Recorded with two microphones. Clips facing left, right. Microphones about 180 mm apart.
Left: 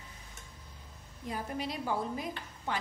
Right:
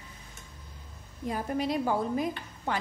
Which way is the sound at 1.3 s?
50° right (ahead or behind).